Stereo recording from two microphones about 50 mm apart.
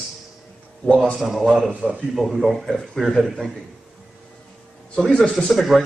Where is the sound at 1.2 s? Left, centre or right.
Centre.